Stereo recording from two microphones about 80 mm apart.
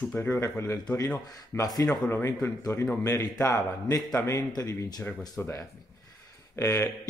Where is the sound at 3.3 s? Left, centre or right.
Left.